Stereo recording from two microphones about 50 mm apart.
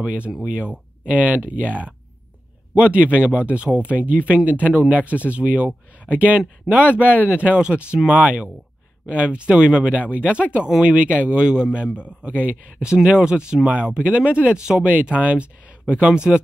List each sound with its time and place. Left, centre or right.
0.0 s a man's voice: right